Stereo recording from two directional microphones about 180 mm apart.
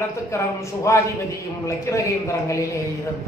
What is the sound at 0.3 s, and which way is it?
Speech, 15° left (ahead or behind).